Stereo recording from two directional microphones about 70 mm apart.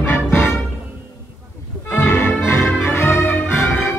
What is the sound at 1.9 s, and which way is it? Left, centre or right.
Music, left.